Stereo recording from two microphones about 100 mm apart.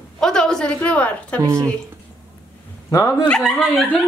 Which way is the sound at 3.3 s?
Centre (ahead or behind).